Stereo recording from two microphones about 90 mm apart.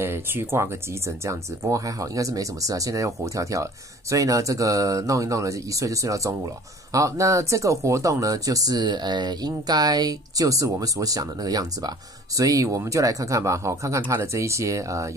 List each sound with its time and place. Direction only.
0.0 s speech: 25° right (ahead or behind)